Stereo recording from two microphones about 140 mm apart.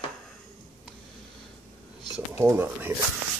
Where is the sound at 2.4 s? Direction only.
15° right (ahead or behind).